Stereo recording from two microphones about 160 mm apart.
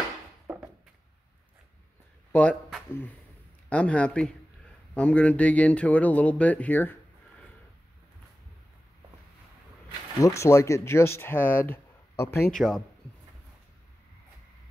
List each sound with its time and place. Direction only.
0.5 s a sound: 5° right (ahead or behind)
2.3 s speech: 10° left (ahead or behind)
10.2 s speech: 20° left (ahead or behind)
12.4 s speech: centre (ahead or behind)